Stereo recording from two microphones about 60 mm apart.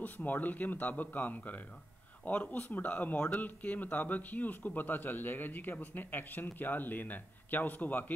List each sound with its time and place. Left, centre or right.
0.0 s a man's voice: left